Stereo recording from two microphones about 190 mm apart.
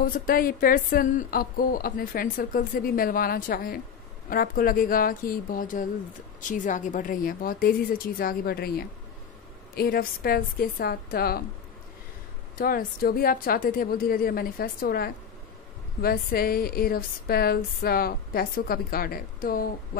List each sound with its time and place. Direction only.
0.0 s speech: 50° left (ahead or behind)
12.5 s speech: 50° left (ahead or behind)